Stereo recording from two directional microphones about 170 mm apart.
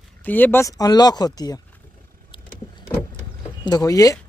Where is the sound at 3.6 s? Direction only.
20° left (ahead or behind).